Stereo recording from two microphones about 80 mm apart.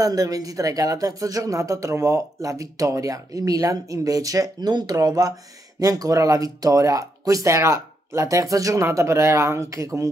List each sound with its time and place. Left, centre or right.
0.0 s speech: right
4.6 s speech: right